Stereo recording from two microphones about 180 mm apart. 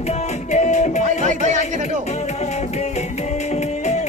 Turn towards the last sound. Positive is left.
turn(degrees=40)  # may be behind; listen again after turning